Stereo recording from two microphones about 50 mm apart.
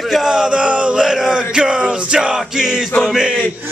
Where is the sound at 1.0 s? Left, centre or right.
Centre.